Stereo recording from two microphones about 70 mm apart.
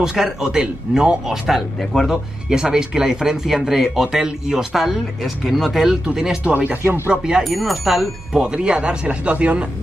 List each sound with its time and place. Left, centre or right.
0.0 s speech: centre
6.5 s speech: right
7.4 s speech: centre